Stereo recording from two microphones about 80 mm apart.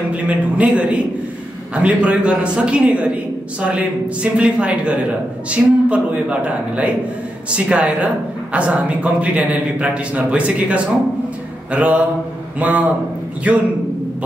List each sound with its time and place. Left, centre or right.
0.1 s a man's voice: centre